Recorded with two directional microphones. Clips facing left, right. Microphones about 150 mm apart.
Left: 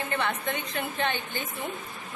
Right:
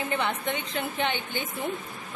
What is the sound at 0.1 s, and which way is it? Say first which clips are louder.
A woman's voice: even; 15° right (ahead or behind).